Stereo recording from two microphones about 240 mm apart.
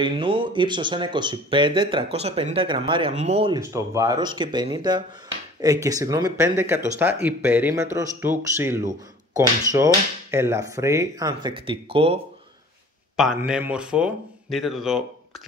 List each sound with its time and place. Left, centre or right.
0.0 s speech: centre
10.3 s speech: centre
13.1 s speech: centre